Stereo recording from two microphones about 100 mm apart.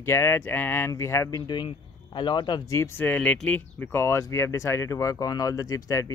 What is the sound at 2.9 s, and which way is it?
Speech, 15° left (ahead or behind).